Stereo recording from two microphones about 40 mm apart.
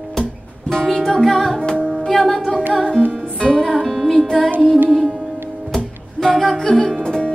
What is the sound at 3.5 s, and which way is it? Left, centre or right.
Music, centre.